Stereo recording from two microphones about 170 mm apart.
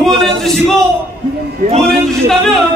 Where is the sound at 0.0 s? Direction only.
Centre (ahead or behind).